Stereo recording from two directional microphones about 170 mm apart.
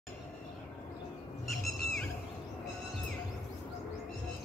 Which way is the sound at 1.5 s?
Centre (ahead or behind).